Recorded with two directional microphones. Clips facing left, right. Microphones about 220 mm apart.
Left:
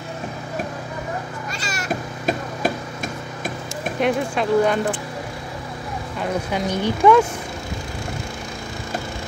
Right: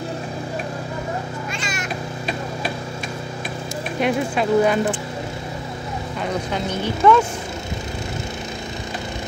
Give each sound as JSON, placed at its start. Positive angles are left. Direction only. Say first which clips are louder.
{"t": 1.6, "sound": "meow", "louder": "left 1 dB", "side_deg": 40}
{"t": 4.0, "sound": "speech", "louder": "even", "side_deg": -5}
{"t": 6.5, "sound": "speech", "louder": "left 2 dB", "side_deg": 15}